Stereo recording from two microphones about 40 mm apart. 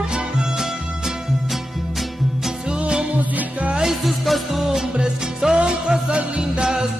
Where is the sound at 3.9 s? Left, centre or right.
Centre.